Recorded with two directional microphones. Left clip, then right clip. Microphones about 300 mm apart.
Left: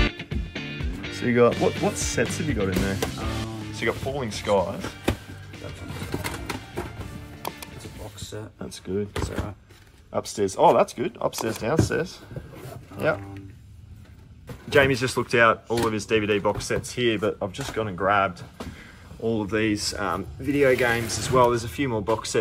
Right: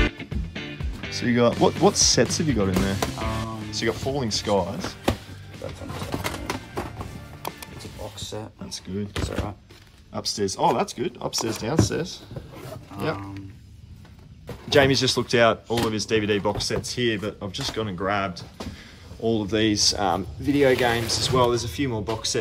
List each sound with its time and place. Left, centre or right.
0.0 s music: centre
2.2 s speech: centre
5.6 s music: centre
8.6 s speech: centre
14.7 s speech: centre